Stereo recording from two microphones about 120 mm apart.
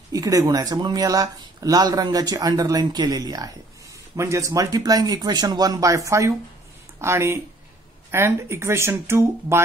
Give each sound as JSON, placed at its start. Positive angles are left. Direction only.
{"t": 0.1, "sound": "speech", "side_deg": -30}